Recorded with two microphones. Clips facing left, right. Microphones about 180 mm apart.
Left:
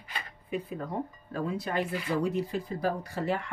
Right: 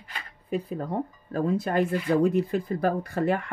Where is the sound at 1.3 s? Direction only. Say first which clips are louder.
Right 6 dB; 45° right (ahead or behind).